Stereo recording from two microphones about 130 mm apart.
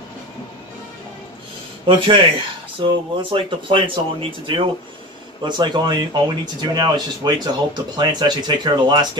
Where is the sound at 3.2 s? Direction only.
40° right (ahead or behind).